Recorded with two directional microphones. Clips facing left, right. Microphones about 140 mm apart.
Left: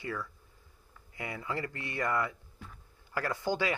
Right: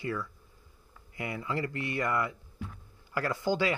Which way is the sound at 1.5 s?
25° right (ahead or behind).